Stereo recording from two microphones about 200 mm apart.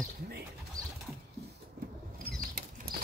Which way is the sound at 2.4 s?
45° right (ahead or behind).